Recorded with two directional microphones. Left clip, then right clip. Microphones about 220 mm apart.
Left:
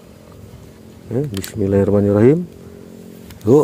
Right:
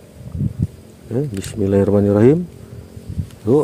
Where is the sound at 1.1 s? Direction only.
10° right (ahead or behind).